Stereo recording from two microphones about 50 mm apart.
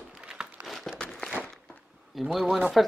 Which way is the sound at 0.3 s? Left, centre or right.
Centre.